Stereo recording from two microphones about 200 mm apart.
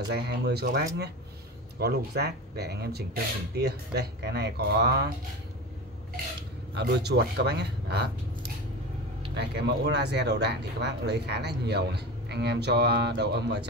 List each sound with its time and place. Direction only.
0.1 s speech: 55° right (ahead or behind)
6.7 s speech: 55° right (ahead or behind)
9.3 s speech: 60° right (ahead or behind)